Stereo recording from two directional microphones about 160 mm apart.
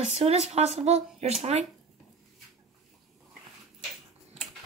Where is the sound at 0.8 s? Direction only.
40° right (ahead or behind).